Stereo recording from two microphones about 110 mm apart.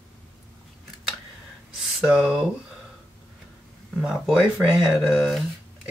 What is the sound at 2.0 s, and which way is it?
Speech, 5° right (ahead or behind).